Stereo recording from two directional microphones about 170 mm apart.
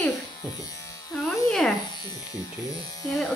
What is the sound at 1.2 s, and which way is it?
Electric shaver, 5° left (ahead or behind).